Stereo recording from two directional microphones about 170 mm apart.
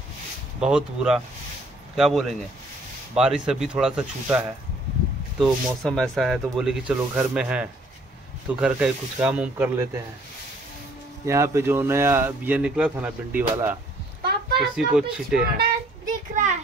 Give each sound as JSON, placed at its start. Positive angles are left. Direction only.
{"t": 0.6, "sound": "speech", "side_deg": -5}
{"t": 5.4, "sound": "speech", "side_deg": 0}
{"t": 11.2, "sound": "speech", "side_deg": -15}
{"t": 15.5, "sound": "child singing", "side_deg": -55}